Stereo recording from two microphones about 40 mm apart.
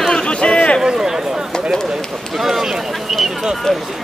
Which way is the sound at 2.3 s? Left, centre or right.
Centre.